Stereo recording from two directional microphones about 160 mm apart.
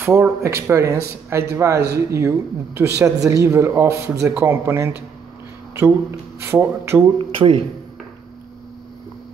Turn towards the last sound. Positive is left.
turn(degrees=-35)  # may be behind; listen again after turning